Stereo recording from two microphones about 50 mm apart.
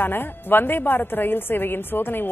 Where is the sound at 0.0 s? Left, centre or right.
Left.